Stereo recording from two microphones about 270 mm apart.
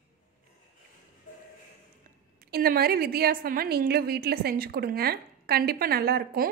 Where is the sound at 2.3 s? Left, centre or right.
Right.